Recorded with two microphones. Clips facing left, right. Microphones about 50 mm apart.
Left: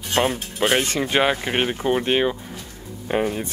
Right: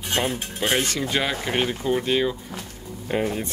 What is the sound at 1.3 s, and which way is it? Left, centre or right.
Speech, left.